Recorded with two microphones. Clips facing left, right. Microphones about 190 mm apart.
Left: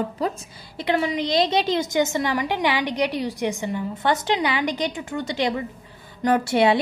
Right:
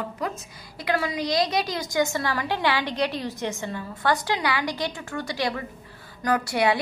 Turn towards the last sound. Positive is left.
turn(degrees=25)  # may be behind; listen again after turning